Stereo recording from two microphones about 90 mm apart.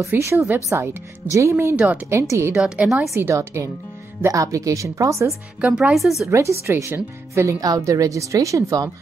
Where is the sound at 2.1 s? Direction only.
30° right (ahead or behind).